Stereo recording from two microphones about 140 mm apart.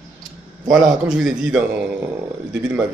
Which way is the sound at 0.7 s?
5° right (ahead or behind).